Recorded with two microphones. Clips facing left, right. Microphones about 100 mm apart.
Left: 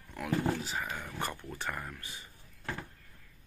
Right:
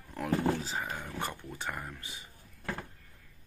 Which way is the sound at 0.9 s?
20° right (ahead or behind).